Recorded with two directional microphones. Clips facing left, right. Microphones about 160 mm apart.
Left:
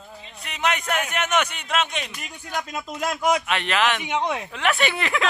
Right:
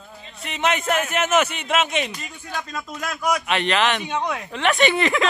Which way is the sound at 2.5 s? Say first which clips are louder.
Left 1 dB; 20° left (ahead or behind).